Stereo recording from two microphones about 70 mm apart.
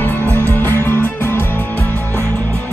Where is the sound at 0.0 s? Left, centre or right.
Left.